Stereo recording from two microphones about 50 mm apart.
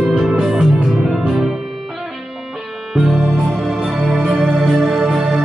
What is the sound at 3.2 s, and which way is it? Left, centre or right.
Music, right.